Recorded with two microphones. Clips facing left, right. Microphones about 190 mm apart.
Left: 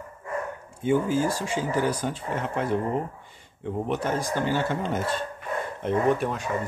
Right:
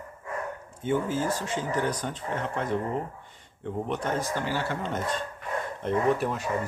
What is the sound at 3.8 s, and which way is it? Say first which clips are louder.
Speech: left 2 dB; 5° left (ahead or behind).